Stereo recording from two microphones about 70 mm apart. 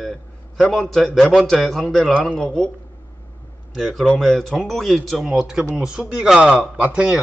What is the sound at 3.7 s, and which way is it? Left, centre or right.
A man's voice, centre.